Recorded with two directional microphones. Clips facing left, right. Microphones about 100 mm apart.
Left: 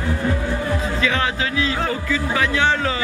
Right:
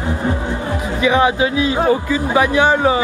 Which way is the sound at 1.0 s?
15° right (ahead or behind).